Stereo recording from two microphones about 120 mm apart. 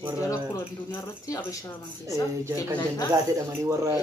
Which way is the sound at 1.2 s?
30° left (ahead or behind).